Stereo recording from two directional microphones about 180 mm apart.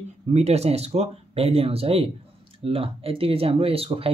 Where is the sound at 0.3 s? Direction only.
35° right (ahead or behind).